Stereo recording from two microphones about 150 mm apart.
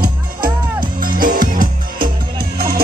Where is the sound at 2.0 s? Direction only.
90° right.